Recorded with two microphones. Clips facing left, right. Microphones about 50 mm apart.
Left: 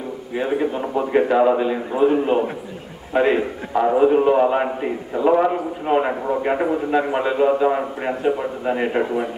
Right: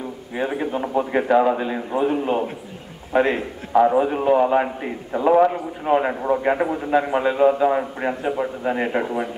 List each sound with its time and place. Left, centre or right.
0.4 s a man's voice: centre
3.1 s a man's voice: centre